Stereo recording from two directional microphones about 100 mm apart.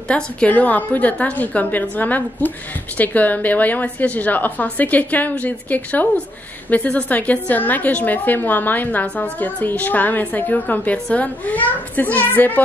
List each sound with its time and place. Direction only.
0.1 s a woman's voice: 15° left (ahead or behind)